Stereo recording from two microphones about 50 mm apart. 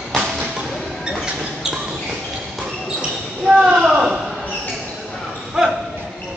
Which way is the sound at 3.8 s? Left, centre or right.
Centre.